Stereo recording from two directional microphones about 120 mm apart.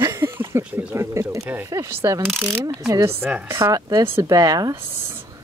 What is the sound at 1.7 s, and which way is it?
Speech, 20° right (ahead or behind).